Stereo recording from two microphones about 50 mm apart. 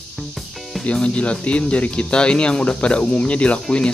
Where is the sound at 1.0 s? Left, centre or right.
Left.